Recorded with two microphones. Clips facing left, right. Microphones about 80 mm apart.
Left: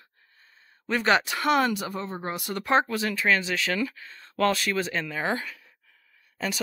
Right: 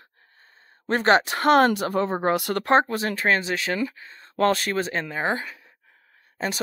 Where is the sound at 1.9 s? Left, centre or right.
Right.